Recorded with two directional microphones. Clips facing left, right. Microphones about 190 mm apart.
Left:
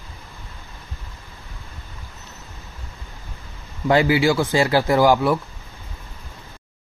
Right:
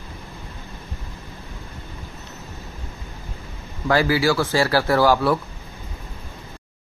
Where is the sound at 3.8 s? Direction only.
20° left (ahead or behind).